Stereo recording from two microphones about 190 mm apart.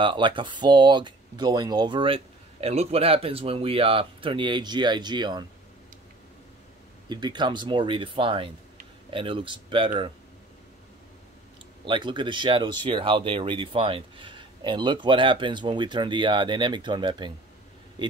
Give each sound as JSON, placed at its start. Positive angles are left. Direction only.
{"t": 0.0, "sound": "speech", "side_deg": -25}
{"t": 7.1, "sound": "speech", "side_deg": -25}
{"t": 11.8, "sound": "speech", "side_deg": -25}